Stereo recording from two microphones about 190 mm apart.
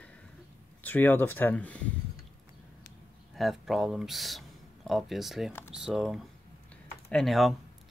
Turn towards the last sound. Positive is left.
turn(degrees=0)  # may be behind; listen again after turning